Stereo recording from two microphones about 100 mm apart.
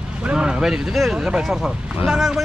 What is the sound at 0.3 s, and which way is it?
A man's voice, 10° right (ahead or behind).